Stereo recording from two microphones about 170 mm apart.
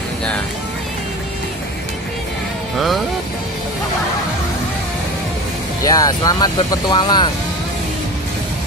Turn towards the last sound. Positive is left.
turn(degrees=25)  # may be behind; listen again after turning